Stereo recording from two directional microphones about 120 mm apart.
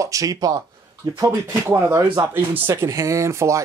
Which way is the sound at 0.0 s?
30° right (ahead or behind).